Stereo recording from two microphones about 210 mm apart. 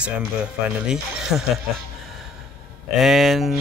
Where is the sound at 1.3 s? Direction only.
Centre (ahead or behind).